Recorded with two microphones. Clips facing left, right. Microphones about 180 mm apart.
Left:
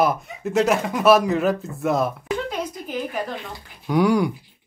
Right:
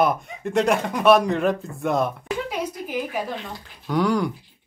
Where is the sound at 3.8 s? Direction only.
10° left (ahead or behind).